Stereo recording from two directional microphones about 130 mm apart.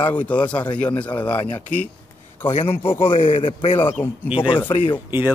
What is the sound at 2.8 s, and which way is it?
Speech, 45° left (ahead or behind).